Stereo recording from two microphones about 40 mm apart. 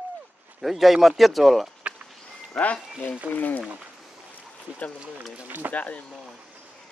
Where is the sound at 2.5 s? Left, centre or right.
Left.